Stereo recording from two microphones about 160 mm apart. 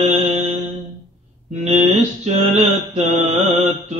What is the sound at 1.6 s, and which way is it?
Mantra, 45° right (ahead or behind).